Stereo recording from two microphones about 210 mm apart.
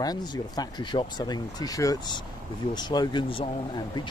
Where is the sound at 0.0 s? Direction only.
20° left (ahead or behind).